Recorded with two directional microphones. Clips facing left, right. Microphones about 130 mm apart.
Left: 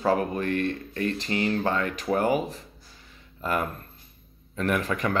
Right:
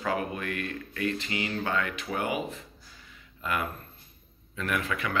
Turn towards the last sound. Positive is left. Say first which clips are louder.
# left 5 dB
turn(degrees=40)  # may be behind; listen again after turning